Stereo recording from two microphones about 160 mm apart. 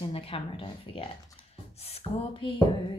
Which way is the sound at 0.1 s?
35° left (ahead or behind).